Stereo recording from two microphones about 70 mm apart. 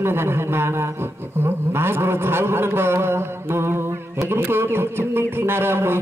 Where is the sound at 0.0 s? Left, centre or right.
Right.